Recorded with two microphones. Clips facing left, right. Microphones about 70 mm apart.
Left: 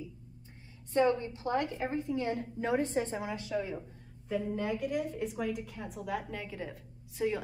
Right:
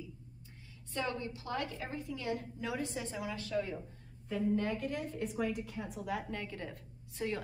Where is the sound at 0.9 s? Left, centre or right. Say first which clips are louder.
Left 10 dB; left.